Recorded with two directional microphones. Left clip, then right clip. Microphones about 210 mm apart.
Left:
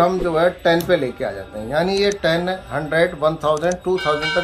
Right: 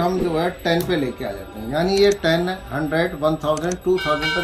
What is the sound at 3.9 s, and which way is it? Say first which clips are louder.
Speech: left 1 dB; centre (ahead or behind).